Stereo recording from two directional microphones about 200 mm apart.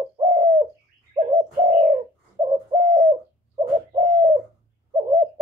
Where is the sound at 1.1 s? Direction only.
25° right (ahead or behind).